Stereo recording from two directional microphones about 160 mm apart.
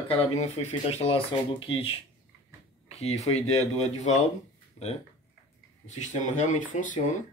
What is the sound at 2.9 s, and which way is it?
Speech, 40° left (ahead or behind).